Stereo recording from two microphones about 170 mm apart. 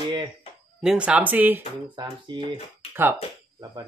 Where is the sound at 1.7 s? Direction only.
30° right (ahead or behind).